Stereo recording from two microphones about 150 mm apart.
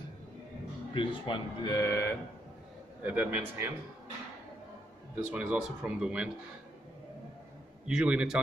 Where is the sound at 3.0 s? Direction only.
10° right (ahead or behind).